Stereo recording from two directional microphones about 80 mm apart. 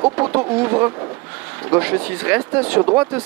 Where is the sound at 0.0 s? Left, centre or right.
Centre.